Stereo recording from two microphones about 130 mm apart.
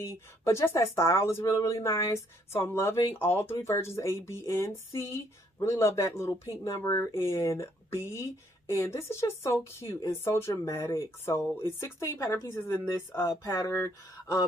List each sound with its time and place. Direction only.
0.4 s speech: 20° left (ahead or behind)